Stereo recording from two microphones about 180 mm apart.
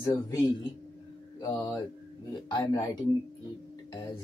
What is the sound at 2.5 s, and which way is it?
Speech, 20° left (ahead or behind).